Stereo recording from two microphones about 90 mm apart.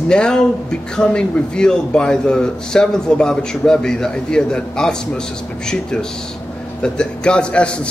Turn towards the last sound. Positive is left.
turn(degrees=10)  # may be behind; listen again after turning